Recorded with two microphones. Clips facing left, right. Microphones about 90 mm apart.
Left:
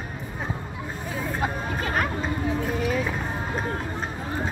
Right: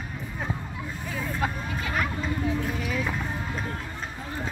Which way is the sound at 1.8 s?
40° left (ahead or behind).